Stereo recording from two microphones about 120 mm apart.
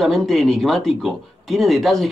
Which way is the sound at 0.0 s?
Centre (ahead or behind).